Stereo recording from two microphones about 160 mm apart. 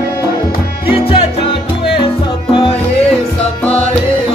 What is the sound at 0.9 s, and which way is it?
Music, 35° left (ahead or behind).